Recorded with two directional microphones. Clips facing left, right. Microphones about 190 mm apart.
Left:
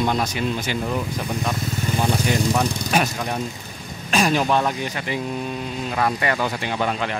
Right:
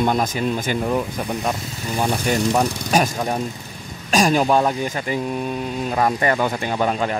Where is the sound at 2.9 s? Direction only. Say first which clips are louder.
Right 3 dB; 40° right (ahead or behind).